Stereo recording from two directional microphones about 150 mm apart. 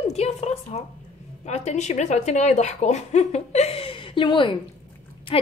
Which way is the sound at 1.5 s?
50° left (ahead or behind).